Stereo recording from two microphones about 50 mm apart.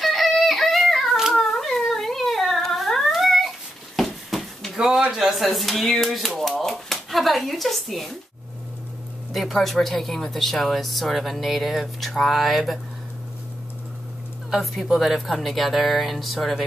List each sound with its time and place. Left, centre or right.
0.0 s child singing: centre
1.3 s a sound: centre
3.1 s cat: centre
4.7 s a sound: centre
5.1 s speech: centre
9.3 s speech: centre
14.5 s speech: centre